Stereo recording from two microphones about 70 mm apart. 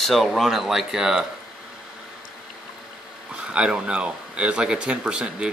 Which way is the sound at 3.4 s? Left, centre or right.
Centre.